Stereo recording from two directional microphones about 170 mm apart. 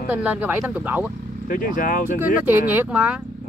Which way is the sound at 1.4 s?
55° left (ahead or behind).